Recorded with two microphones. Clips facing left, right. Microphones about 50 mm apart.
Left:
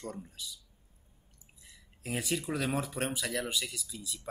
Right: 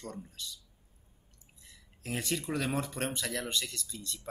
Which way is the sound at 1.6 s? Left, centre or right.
Centre.